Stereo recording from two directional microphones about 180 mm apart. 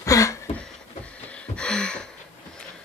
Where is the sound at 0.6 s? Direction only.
5° left (ahead or behind).